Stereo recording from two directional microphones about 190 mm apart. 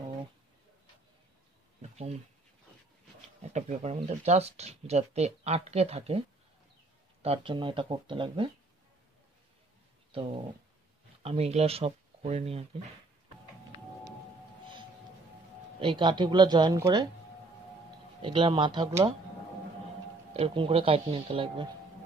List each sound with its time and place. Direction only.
1.8 s a sound: 35° right (ahead or behind)
3.5 s speech: 35° right (ahead or behind)
11.2 s speech: 35° right (ahead or behind)
15.8 s speech: 25° right (ahead or behind)
18.2 s speech: 25° right (ahead or behind)
20.3 s speech: 30° right (ahead or behind)